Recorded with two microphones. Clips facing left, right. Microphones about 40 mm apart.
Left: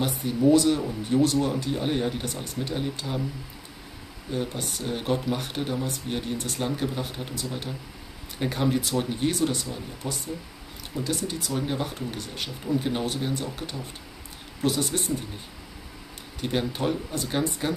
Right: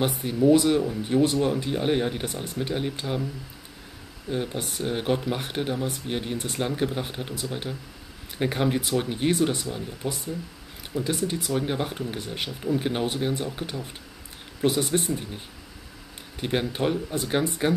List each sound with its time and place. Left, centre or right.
0.0 s speech: centre
4.3 s speech: centre
16.3 s speech: right